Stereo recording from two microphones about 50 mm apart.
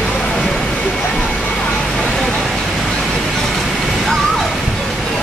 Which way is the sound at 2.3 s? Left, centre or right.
Centre.